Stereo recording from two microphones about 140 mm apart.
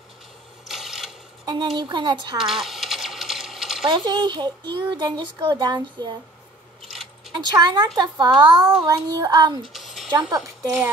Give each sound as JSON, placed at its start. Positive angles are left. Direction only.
{"t": 0.7, "sound": "mechanisms", "side_deg": 0}
{"t": 1.4, "sound": "a sound", "side_deg": -30}
{"t": 1.8, "sound": "a child's voice", "side_deg": -35}
{"t": 2.3, "sound": "coin", "side_deg": 0}
{"t": 3.8, "sound": "a child's voice", "side_deg": -35}
{"t": 6.9, "sound": "keys jangling", "side_deg": 0}
{"t": 7.3, "sound": "a child's voice", "side_deg": -30}
{"t": 9.7, "sound": "a sound", "side_deg": 0}
{"t": 10.3, "sound": "a woman's voice", "side_deg": -15}